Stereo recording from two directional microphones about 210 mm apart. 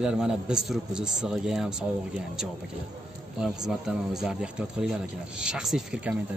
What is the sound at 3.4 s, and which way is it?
A man's voice, centre (ahead or behind).